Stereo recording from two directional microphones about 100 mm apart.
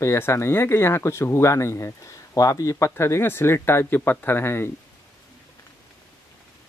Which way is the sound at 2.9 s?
25° left (ahead or behind).